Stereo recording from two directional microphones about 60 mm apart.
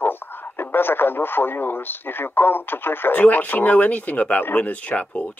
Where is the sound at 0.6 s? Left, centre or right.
Left.